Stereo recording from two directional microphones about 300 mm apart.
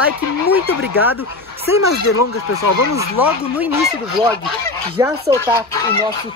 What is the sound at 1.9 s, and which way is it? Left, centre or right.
Speech, left.